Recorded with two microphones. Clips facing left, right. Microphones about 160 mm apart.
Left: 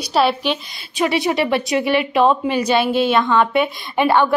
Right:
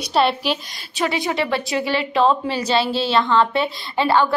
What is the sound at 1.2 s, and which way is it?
Speech, 20° left (ahead or behind).